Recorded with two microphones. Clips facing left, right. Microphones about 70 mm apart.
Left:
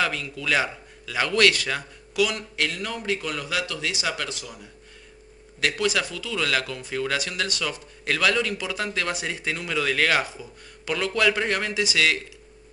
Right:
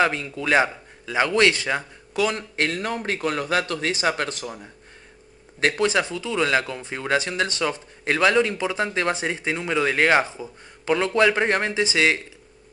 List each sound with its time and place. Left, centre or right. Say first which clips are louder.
0.0 s speech: right 4 dB; right
5.6 s speech: right 4 dB; right